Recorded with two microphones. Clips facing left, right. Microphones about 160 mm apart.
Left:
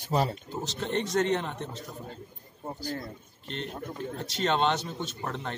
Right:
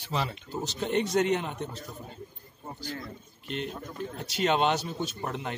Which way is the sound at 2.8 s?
40° left (ahead or behind).